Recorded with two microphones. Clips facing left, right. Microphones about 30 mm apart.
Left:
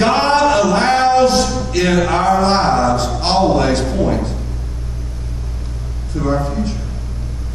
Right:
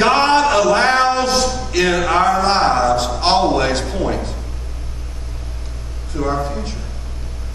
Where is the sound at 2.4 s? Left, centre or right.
Centre.